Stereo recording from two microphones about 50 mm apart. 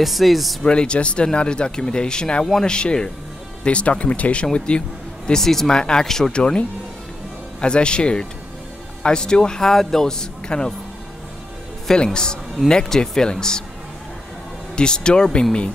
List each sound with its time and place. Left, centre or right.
0.0 s speech: centre
0.7 s speech: centre
7.6 s speech: centre
11.9 s speech: centre
14.8 s speech: centre